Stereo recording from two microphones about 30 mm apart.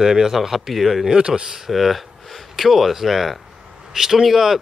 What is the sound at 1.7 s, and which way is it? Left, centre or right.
Speech, centre.